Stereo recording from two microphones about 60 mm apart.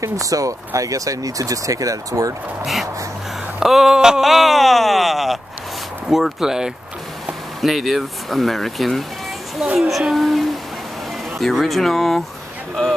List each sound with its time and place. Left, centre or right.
0.0 s speech: right
2.6 s groan: centre
6.0 s speech: centre
7.6 s groan: centre